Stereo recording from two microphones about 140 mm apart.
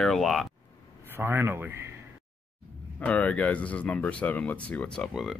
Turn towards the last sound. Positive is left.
turn(degrees=0)  # may be behind; listen again after turning